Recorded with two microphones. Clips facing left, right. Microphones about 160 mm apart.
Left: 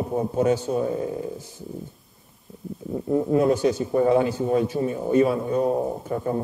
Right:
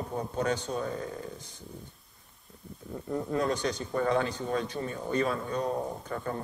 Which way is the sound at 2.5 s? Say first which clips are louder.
Left 10 dB; 5° left (ahead or behind).